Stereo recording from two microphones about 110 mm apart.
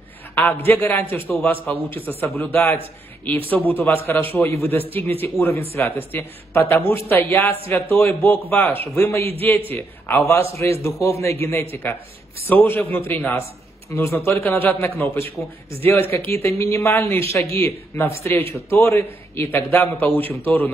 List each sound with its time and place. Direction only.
0.3 s a sound: 15° left (ahead or behind)
0.7 s a man's voice: 20° left (ahead or behind)
16.2 s speech: 60° right (ahead or behind)
16.4 s a man's voice: 25° left (ahead or behind)